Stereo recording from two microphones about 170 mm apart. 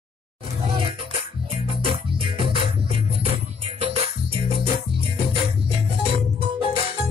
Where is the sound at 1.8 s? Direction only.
30° right (ahead or behind).